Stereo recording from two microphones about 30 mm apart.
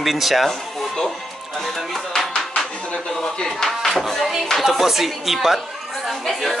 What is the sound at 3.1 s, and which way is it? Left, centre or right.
Speech, left.